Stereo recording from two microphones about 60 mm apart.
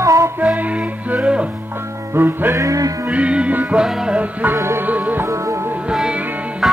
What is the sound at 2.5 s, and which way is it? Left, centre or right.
Music, right.